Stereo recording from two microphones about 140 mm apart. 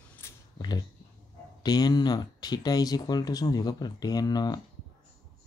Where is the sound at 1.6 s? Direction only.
30° left (ahead or behind).